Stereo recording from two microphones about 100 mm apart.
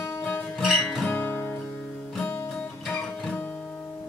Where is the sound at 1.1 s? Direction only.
20° left (ahead or behind).